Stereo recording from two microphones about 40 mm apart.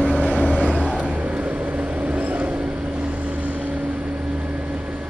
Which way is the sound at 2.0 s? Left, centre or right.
Right.